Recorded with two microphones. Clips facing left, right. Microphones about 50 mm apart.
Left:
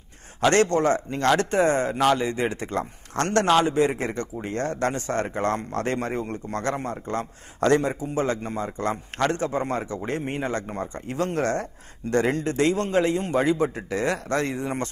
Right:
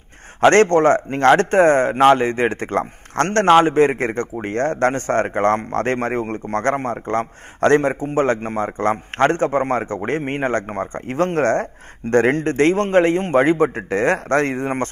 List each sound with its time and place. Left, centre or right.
0.4 s a man's voice: right